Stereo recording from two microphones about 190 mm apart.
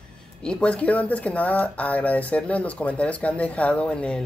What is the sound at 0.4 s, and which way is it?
Speech, 5° left (ahead or behind).